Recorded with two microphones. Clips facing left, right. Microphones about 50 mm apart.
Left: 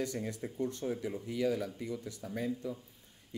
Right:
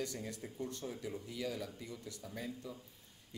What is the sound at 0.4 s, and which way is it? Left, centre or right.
Speech, left.